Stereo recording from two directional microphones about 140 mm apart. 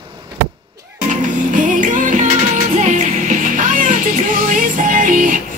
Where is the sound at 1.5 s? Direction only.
70° right (ahead or behind).